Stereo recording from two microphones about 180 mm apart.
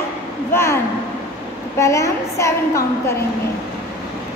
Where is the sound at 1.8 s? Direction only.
15° left (ahead or behind).